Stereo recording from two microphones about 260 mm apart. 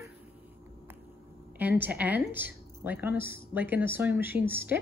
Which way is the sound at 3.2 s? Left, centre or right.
Left.